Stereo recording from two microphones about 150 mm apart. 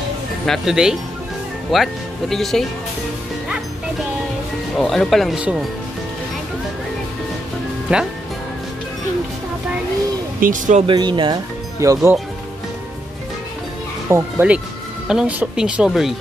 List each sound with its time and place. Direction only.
0.5 s speech: 5° right (ahead or behind)
4.7 s speech: centre (ahead or behind)
7.9 s speech: 5° right (ahead or behind)
10.4 s speech: 55° right (ahead or behind)
10.9 s speech: 30° right (ahead or behind)
11.8 s speech: 20° right (ahead or behind)
14.0 s speech: 10° right (ahead or behind)